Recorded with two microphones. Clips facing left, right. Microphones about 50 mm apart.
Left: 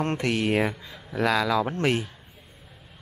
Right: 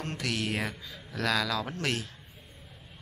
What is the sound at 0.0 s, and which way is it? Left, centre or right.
Speech, left.